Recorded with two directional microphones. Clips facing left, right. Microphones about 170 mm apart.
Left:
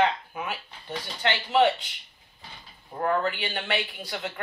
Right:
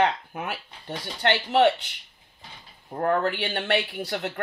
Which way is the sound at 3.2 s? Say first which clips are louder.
Right 3 dB; 65° right (ahead or behind).